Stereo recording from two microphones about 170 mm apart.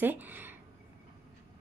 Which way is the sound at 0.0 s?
10° right (ahead or behind).